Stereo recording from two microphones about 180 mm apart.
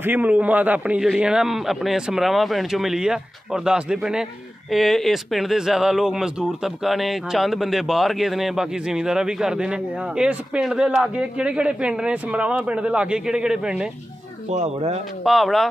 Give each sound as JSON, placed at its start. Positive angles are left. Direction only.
{"t": 0.0, "sound": "a man's voice", "side_deg": -10}
{"t": 14.5, "sound": "speech", "side_deg": -40}
{"t": 15.2, "sound": "a man's voice", "side_deg": 0}